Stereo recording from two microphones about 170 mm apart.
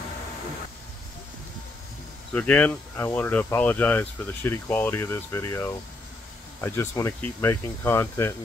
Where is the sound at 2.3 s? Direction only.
5° left (ahead or behind).